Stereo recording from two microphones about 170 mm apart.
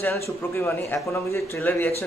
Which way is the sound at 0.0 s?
15° left (ahead or behind).